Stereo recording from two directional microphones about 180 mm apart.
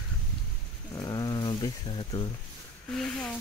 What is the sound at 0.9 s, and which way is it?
Wild animals, 20° left (ahead or behind).